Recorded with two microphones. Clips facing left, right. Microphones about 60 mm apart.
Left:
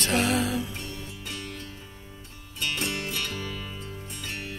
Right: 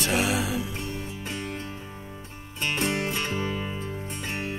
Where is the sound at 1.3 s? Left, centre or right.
Right.